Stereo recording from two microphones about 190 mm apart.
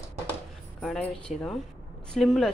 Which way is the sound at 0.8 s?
Centre (ahead or behind).